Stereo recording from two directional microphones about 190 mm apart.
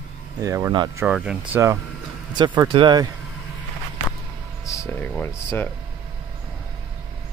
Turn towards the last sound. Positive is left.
turn(degrees=10)  # may be behind; listen again after turning